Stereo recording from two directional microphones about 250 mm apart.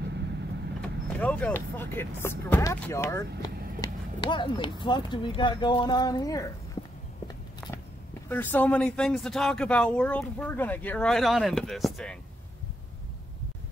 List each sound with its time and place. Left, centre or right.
0.7 s speech: centre
3.8 s a sound: centre
4.8 s speech: centre
8.3 s speech: centre